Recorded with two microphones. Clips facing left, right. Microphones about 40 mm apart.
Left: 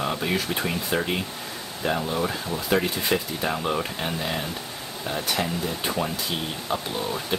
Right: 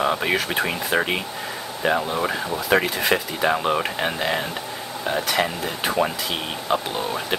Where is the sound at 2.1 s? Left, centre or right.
Right.